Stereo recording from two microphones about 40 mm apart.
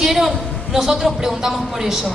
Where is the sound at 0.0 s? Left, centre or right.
Centre.